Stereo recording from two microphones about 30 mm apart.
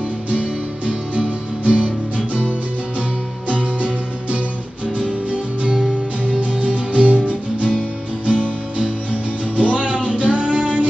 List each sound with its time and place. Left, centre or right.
0.3 s music: right
6.3 s music: right